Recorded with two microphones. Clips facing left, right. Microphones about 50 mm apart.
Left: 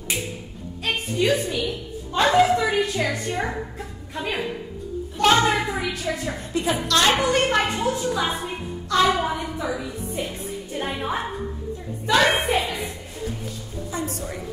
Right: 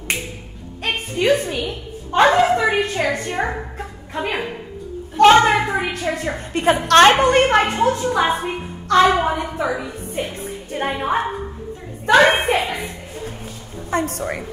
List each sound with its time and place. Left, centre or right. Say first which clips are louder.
0.8 s a sound: right 4 dB; right
5.1 s a woman's voice: right 7 dB; right
9.6 s music: right 5 dB; right
13.8 s a woman's voice: right 8 dB; right